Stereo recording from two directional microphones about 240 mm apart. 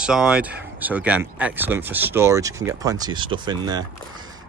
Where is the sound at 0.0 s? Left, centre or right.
Centre.